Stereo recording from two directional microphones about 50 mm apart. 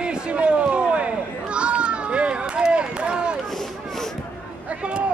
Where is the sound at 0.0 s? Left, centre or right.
Right.